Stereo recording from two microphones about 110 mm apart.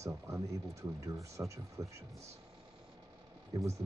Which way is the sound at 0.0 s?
30° right (ahead or behind).